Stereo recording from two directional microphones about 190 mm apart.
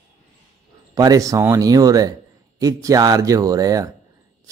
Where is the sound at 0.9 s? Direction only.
20° right (ahead or behind).